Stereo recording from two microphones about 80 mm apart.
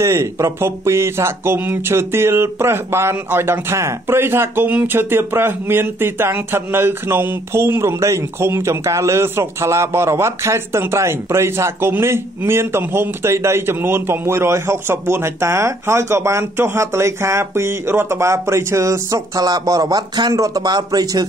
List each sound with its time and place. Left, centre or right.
0.0 s speech: right